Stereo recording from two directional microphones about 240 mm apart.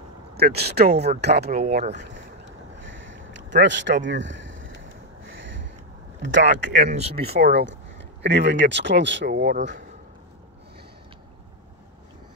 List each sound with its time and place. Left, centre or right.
0.3 s speech: right
1.5 s speech: right
2.8 s a sound: right
3.6 s speech: right
5.3 s a sound: right
6.4 s speech: right
7.3 s speech: right